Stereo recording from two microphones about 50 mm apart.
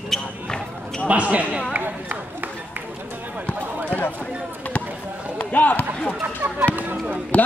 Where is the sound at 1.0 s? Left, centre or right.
Right.